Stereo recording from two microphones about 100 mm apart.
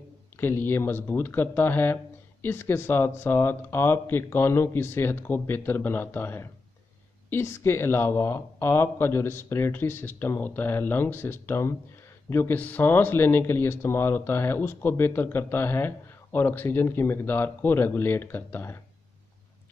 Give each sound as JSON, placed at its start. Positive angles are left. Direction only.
{"t": 0.4, "sound": "speech", "side_deg": 25}